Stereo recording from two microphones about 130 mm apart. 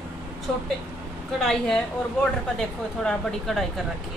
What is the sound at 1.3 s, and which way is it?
A woman's voice, 5° left (ahead or behind).